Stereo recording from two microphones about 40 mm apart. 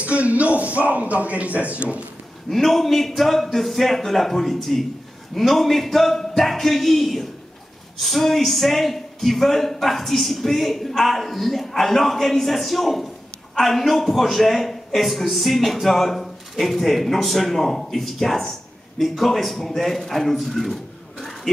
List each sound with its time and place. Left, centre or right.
0.0 s speech: right
2.5 s a man's voice: centre
20.3 s a sound: centre